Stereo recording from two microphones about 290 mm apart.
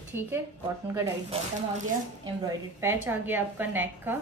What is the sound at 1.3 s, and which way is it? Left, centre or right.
Speech, right.